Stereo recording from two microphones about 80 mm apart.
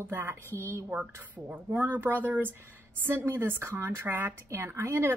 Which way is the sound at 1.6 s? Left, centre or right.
Right.